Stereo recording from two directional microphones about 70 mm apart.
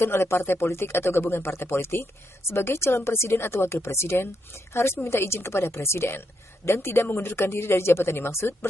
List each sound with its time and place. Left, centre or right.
0.0 s a woman's voice: left